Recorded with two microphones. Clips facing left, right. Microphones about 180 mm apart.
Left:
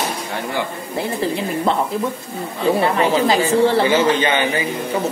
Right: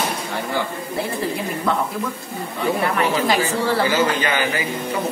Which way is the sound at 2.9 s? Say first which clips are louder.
Left 3 dB; 25° left (ahead or behind).